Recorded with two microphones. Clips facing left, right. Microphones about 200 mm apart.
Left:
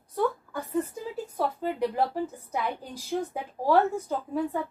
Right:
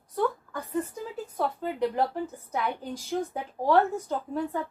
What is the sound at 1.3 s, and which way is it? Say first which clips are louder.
Speech: even; 5° left (ahead or behind).